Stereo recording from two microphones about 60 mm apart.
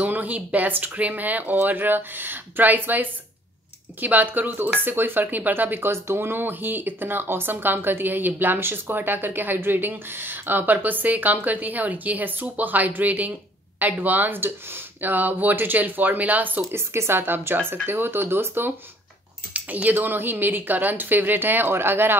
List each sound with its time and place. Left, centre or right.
0.0 s speech: right
16.7 s speech: right
19.5 s speech: right